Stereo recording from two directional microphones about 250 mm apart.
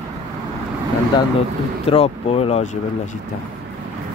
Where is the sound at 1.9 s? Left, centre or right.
Left.